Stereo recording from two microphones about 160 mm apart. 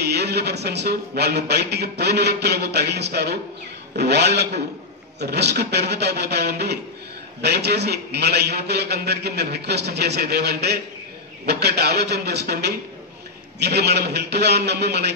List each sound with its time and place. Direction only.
0.0 s speech: 90° right